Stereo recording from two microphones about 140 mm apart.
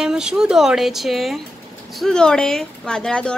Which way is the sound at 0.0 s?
5° right (ahead or behind).